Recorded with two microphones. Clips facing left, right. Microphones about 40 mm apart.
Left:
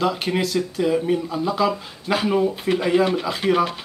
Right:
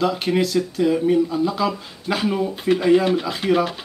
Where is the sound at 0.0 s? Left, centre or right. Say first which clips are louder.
Right 2 dB; centre.